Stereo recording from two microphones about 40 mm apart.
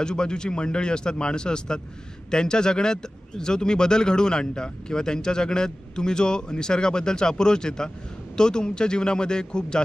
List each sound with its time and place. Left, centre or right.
0.0 s speech: left